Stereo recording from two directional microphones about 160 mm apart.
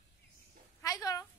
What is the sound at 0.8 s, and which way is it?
Speech, 20° left (ahead or behind).